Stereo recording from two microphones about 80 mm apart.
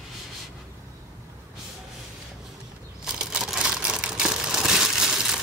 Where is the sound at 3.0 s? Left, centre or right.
Centre.